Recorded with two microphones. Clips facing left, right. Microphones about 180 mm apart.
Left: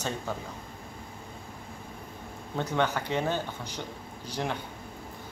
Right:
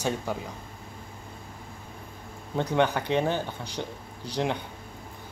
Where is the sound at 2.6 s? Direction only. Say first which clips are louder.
Right 4 dB; 15° right (ahead or behind).